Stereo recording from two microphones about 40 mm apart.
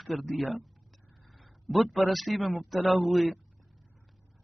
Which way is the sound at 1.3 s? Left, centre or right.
Centre.